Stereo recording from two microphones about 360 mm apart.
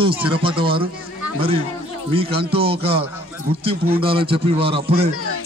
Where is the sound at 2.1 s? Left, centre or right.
Centre.